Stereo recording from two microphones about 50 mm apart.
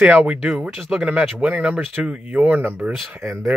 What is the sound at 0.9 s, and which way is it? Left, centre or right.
Speech, right.